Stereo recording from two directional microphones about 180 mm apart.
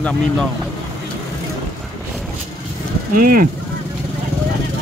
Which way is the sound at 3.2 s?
50° right (ahead or behind).